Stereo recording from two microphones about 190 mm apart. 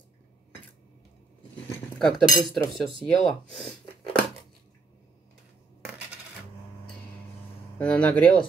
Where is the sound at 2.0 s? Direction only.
Centre (ahead or behind).